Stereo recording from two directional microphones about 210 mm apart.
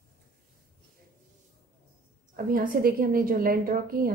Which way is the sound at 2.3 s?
45° right (ahead or behind).